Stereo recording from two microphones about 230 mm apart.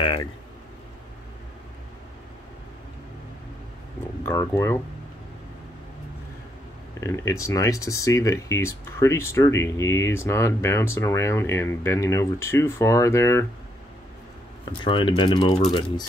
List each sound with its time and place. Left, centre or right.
0.0 s speech: left
4.2 s speech: centre
7.0 s speech: centre
14.9 s speech: left